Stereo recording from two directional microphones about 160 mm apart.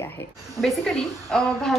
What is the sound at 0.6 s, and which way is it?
A woman's voice, 5° left (ahead or behind).